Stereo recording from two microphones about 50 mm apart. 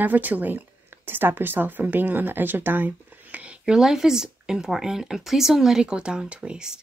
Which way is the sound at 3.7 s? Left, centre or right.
Centre.